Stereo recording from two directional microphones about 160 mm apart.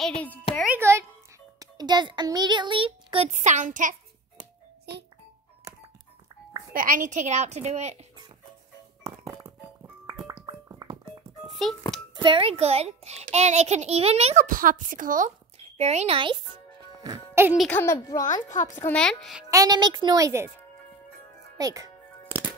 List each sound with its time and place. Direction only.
0.7 s a sound: 15° right (ahead or behind)
1.6 s a child's voice: 25° right (ahead or behind); by 3.9 s 50° right (ahead or behind)
6.7 s a child's voice: 60° right (ahead or behind); by 8.0 s 45° right (ahead or behind)
9.0 s music: 20° right (ahead or behind)
10.4 s music: 35° right (ahead or behind)
11.4 s music: centre (ahead or behind)
12.2 s a child's voice: 35° right (ahead or behind)
17.3 s music: 15° right (ahead or behind)
17.6 s speech: 10° left (ahead or behind)
18.2 s speech: 50° left (ahead or behind)
18.9 s speech: 5° left (ahead or behind)
19.5 s a child's voice: 25° right (ahead or behind)
21.5 s speech: 20° right (ahead or behind)